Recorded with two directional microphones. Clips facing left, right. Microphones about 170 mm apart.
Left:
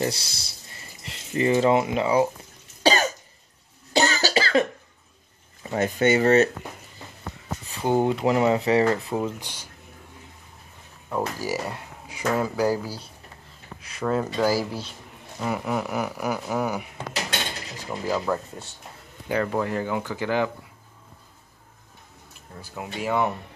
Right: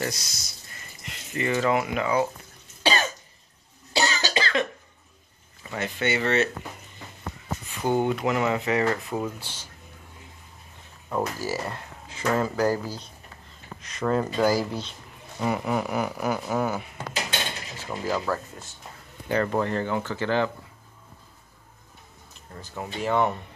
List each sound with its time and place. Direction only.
0.0 s a sound: 30° left (ahead or behind)
2.8 s cough: 40° left (ahead or behind)
5.6 s speech: 40° left (ahead or behind)
7.6 s speech: 30° left (ahead or behind)
11.3 s speech: 15° left (ahead or behind)
15.4 s a sound: centre (ahead or behind)
16.4 s speech: 10° left (ahead or behind)
22.6 s speech: 10° left (ahead or behind)